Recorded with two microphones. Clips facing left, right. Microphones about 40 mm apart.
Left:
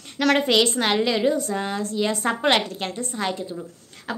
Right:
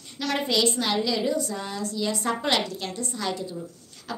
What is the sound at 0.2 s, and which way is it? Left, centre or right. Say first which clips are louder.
A woman's voice: left 6 dB; left.